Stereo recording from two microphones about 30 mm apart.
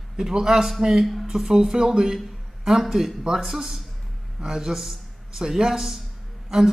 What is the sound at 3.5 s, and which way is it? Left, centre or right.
A man's voice, centre.